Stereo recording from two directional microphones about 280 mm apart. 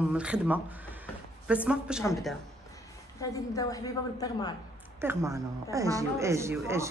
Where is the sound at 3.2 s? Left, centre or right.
Centre.